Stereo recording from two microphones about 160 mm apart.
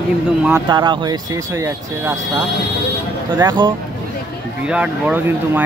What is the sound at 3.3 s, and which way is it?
Speech, 30° right (ahead or behind).